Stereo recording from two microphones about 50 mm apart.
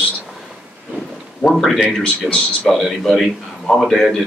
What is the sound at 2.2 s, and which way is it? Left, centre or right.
Speech, centre.